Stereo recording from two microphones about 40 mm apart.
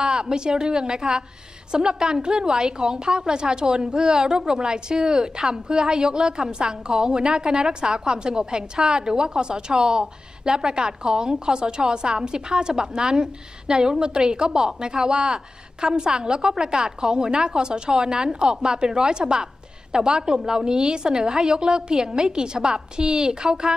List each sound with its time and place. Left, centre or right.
0.0 s a woman's voice: right